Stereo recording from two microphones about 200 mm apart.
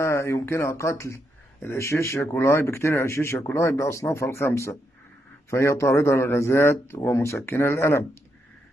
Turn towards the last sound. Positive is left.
turn(degrees=15)  # may be behind; listen again after turning